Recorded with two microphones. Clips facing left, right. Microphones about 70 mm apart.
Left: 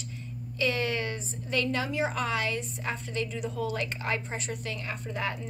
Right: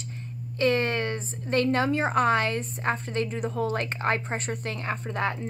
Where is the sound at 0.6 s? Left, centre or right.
Right.